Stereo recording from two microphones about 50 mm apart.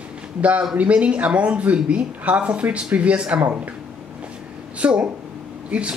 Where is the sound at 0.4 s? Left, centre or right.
Right.